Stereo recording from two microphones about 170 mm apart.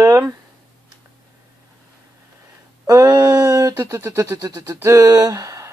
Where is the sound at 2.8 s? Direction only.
20° right (ahead or behind).